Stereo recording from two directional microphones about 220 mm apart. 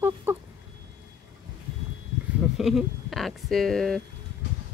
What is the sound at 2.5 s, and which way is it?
Speech, centre (ahead or behind).